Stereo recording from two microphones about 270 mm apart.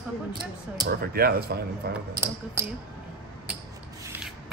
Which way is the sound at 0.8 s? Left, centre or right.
Right.